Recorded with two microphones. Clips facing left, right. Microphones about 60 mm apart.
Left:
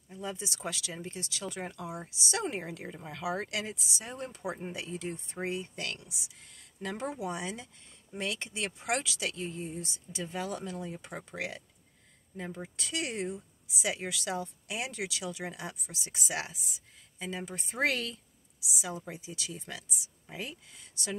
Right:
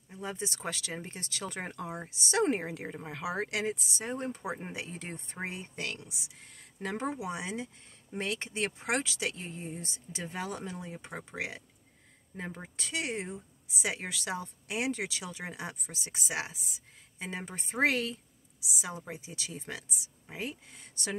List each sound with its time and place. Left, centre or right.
0.1 s speech: right